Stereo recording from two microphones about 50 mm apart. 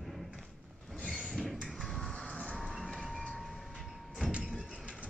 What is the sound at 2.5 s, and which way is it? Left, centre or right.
Vehicle, centre.